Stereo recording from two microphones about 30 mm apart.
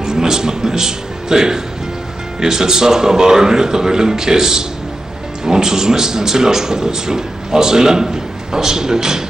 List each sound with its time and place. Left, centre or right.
0.0 s speech: centre